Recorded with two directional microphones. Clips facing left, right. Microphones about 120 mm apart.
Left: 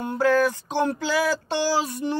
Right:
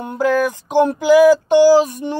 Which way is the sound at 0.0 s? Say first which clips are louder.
Right 3 dB; 20° right (ahead or behind).